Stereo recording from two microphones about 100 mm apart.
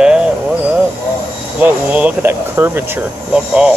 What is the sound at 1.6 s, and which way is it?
Speech, 20° right (ahead or behind).